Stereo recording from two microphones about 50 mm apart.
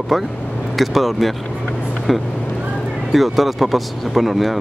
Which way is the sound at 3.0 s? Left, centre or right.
Centre.